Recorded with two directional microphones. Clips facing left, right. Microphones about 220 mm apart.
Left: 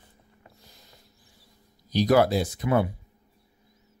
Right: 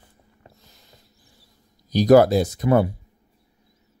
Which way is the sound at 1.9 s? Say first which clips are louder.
Right 7 dB; 45° right (ahead or behind).